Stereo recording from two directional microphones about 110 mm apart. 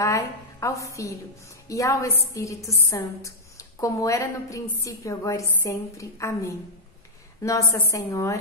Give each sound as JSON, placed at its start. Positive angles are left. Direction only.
{"t": 0.0, "sound": "a woman's voice", "side_deg": 30}